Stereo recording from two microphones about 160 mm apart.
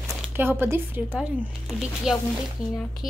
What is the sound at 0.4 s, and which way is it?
Speech, 15° right (ahead or behind).